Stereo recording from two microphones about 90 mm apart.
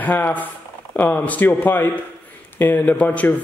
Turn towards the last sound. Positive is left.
turn(degrees=15)  # may be behind; listen again after turning